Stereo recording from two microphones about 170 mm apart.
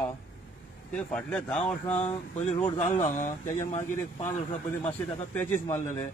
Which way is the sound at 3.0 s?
50° left (ahead or behind).